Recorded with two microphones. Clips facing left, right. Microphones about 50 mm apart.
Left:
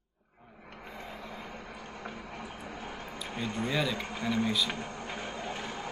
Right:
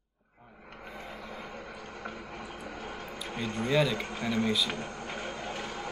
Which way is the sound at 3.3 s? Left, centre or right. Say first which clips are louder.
Right 4 dB; centre.